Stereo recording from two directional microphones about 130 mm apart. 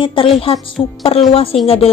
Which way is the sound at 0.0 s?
45° left (ahead or behind).